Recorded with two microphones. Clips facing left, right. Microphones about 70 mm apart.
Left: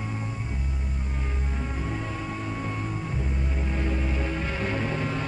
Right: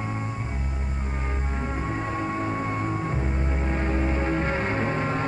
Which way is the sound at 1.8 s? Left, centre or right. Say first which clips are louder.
Right 6 dB; right.